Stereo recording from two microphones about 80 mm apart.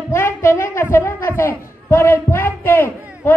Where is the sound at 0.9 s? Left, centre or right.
Left.